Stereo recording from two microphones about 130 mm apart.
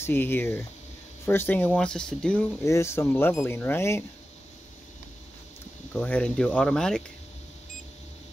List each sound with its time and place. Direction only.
0.0 s speech: 15° left (ahead or behind)
2.6 s speech: 20° left (ahead or behind)
5.9 s speech: 10° left (ahead or behind)